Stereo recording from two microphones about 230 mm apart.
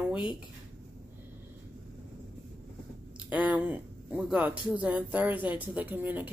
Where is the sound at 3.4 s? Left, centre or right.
Centre.